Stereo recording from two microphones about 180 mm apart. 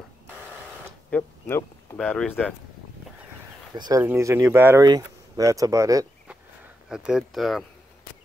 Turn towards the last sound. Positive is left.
turn(degrees=0)  # may be behind; listen again after turning